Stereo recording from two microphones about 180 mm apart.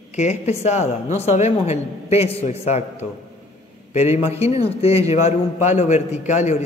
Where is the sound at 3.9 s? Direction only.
40° left (ahead or behind).